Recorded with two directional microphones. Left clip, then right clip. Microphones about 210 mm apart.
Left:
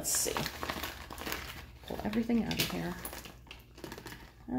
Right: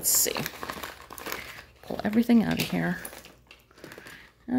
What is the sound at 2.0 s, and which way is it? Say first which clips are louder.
Speech: right 9 dB; 55° right (ahead or behind).